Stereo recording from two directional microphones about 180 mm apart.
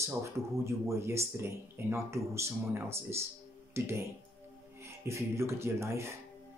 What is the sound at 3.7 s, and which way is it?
Speech, 15° right (ahead or behind).